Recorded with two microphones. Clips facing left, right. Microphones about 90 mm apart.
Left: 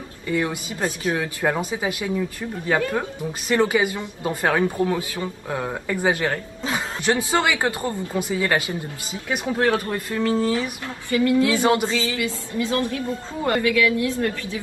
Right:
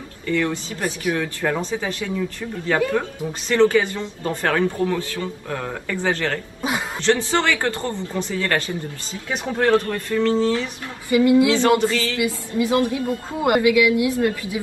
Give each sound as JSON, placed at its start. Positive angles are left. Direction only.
{"t": 0.3, "sound": "speech", "side_deg": 15}
{"t": 11.1, "sound": "a woman's voice", "side_deg": -15}
{"t": 11.6, "sound": "speech", "side_deg": 15}
{"t": 12.2, "sound": "a woman's voice", "side_deg": -20}